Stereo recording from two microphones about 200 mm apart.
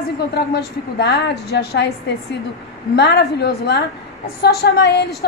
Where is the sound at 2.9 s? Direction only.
55° left (ahead or behind).